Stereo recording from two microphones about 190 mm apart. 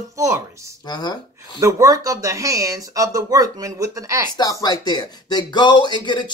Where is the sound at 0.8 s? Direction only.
20° left (ahead or behind).